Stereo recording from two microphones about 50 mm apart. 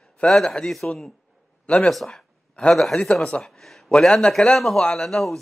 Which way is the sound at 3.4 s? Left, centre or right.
Centre.